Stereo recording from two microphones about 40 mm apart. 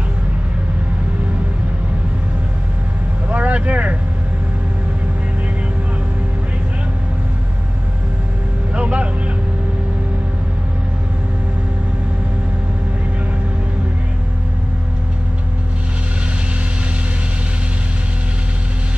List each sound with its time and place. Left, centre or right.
3.3 s vehicle: right
8.7 s vehicle: right